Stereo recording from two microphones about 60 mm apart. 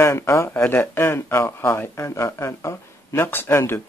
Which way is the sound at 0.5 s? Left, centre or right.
Left.